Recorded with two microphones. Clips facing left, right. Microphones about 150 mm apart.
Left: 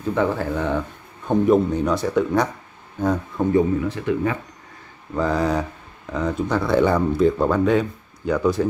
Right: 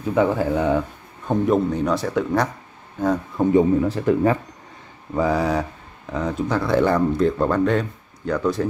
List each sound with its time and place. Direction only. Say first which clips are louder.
0.1 s speech: right 3 dB; 15° right (ahead or behind)
3.4 s speech: right 2 dB; 10° right (ahead or behind)
3.8 s speech: right 4 dB; 40° right (ahead or behind)
5.1 s speech: right 1 dB; 5° right (ahead or behind)